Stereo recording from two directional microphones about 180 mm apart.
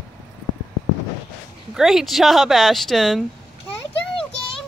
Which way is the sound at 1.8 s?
Centre (ahead or behind).